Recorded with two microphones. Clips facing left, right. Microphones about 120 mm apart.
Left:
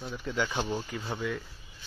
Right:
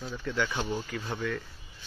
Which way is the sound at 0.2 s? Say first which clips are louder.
Even; 15° left (ahead or behind).